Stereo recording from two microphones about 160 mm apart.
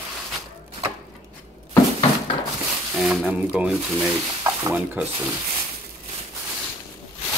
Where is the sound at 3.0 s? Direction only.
5° right (ahead or behind).